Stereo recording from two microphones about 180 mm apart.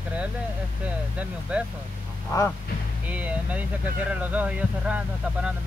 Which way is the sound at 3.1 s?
10° right (ahead or behind).